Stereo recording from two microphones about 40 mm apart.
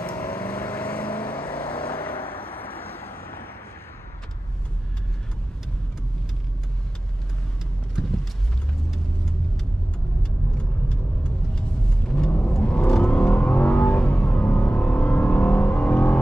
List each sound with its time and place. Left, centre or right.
0.1 s vehicle: left
0.7 s vehicle: left
1.4 s vehicle: left
10.6 s vehicle: left